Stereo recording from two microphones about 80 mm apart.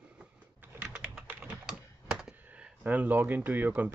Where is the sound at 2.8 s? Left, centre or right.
Right.